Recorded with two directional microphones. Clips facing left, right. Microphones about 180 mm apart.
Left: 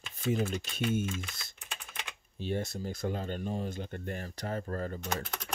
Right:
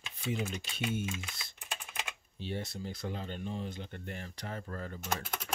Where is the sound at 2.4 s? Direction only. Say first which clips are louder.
Left 5 dB; 45° left (ahead or behind).